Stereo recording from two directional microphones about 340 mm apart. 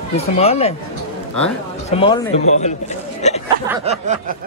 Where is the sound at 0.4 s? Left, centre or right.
Centre.